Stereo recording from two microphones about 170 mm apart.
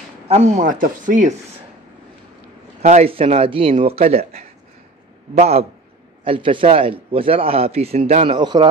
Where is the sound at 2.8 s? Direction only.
40° right (ahead or behind).